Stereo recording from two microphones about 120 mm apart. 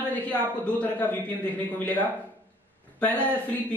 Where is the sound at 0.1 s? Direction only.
15° left (ahead or behind).